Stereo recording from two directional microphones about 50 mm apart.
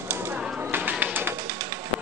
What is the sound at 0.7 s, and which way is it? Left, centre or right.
Bird, right.